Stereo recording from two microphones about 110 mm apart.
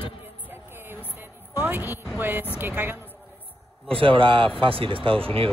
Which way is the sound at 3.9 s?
55° right (ahead or behind).